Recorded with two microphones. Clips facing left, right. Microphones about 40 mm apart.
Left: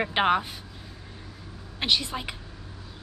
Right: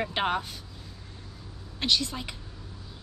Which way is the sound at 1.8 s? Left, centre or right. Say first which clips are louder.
Left 1 dB; left.